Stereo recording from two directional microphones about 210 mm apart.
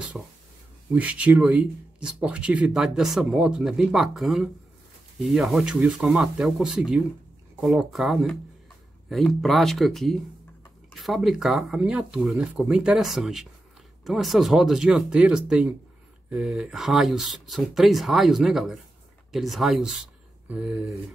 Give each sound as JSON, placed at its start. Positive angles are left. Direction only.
{"t": 0.2, "sound": "speech", "side_deg": -5}